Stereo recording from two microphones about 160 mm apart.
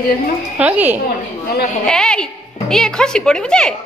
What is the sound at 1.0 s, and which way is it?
Speech, 75° left (ahead or behind).